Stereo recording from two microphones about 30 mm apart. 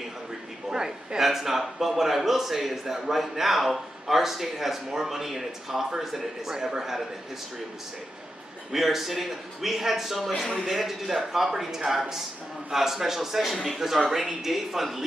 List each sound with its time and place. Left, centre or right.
0.7 s a woman's voice: centre
1.2 s a man's voice: centre
8.7 s a man's voice: centre
10.4 s speech: centre
10.7 s a man's voice: centre